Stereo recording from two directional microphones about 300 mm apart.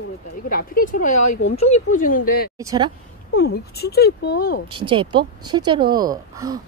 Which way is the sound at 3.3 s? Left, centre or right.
Left.